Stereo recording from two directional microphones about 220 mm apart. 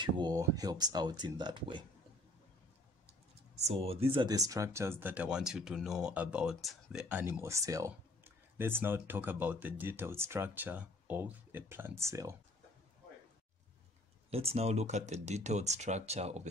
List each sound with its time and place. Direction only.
0.0 s speech: 20° right (ahead or behind)
3.6 s speech: 25° right (ahead or behind)
14.3 s speech: 25° right (ahead or behind)